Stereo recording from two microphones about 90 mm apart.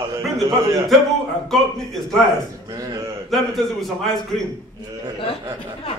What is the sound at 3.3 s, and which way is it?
A man's voice, centre (ahead or behind).